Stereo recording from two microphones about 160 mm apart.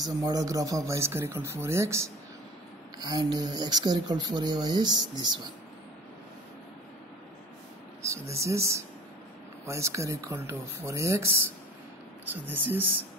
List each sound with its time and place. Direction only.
0.0 s speech: 25° right (ahead or behind)
8.0 s speech: 20° right (ahead or behind)